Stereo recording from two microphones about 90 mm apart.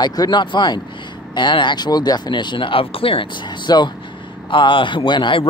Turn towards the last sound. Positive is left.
turn(degrees=60)  # may be behind; listen again after turning